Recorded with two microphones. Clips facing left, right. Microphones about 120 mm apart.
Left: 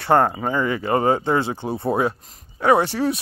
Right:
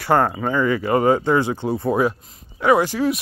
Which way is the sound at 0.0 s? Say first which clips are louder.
Left 1 dB; 25° left (ahead or behind).